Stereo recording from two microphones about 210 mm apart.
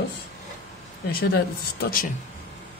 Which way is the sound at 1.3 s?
45° left (ahead or behind).